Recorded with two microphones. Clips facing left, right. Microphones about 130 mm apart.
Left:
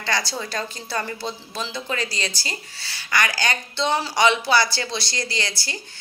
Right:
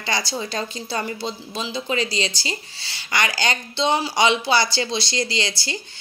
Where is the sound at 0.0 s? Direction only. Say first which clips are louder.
Right 1 dB; 15° right (ahead or behind).